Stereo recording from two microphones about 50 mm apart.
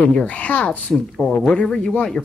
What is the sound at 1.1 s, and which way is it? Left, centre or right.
Speech, centre.